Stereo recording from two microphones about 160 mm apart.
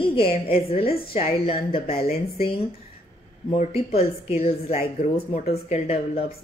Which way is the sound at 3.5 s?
40° left (ahead or behind).